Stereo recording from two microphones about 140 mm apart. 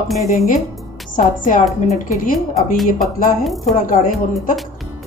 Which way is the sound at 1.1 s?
70° left (ahead or behind).